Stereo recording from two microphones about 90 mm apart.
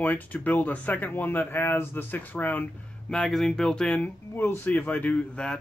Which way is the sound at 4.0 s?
20° left (ahead or behind).